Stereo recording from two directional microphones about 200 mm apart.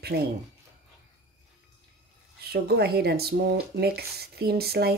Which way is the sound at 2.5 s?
50° right (ahead or behind).